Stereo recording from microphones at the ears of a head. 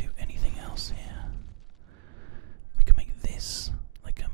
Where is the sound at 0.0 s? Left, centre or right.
Right.